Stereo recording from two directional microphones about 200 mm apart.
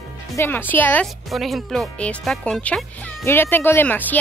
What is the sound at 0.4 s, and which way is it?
Speech, 10° left (ahead or behind).